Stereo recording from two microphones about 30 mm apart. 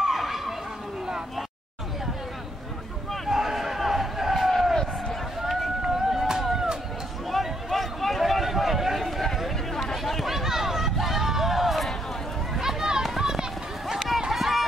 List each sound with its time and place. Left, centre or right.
0.2 s a sound: centre
3.3 s a sound: centre
4.5 s crowd: centre
5.4 s run: centre
5.9 s chop: centre
6.5 s music: centre
7.2 s a sound: centre
12.5 s children playing: centre
13.2 s run: centre
14.3 s run: centre